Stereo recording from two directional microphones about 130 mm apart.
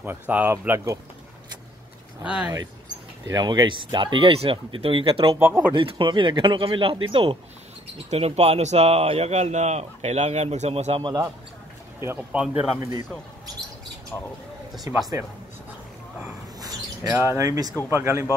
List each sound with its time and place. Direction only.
0.0 s speech: 15° right (ahead or behind)
2.4 s speech: 30° right (ahead or behind)
5.3 s speech: 15° right (ahead or behind)
5.8 s speech: 40° right (ahead or behind)
8.1 s speech: 55° right (ahead or behind)
11.0 s speech: 30° right (ahead or behind)
12.0 s speech: 20° right (ahead or behind)
14.1 s speech: 20° left (ahead or behind)
14.9 s speech: 25° right (ahead or behind)
16.5 s a sound: 30° right (ahead or behind)
17.1 s speech: 20° right (ahead or behind)